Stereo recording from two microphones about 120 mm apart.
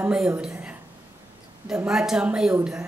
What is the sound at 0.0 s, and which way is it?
Speech, 5° right (ahead or behind).